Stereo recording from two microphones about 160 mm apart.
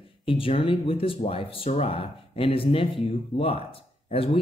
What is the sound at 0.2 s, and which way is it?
Speech, 35° left (ahead or behind).